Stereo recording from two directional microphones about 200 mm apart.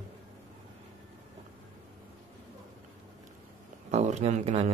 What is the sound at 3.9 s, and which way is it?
Speech, 35° right (ahead or behind).